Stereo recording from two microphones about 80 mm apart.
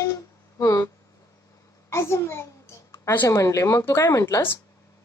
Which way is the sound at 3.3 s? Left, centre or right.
Left.